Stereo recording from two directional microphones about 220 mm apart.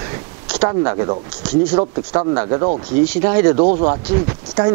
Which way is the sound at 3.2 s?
15° right (ahead or behind).